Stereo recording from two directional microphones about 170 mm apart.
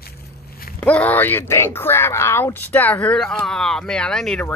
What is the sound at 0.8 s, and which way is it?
Speech, 10° left (ahead or behind).